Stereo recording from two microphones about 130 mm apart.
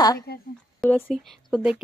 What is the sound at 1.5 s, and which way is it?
Speech, 5° right (ahead or behind).